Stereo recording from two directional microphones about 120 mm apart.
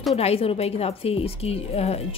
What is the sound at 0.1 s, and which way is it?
A woman's voice, 60° left (ahead or behind).